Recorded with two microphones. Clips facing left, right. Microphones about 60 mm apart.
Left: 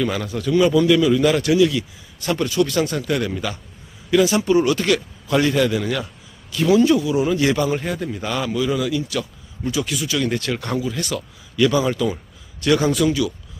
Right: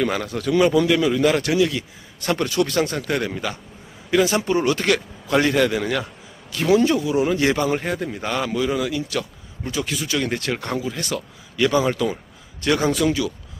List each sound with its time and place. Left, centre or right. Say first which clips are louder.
0.0 s speech: even; right
0.8 s a man's voice: left 2 dB; right
2.1 s a man's voice: left 1 dB; right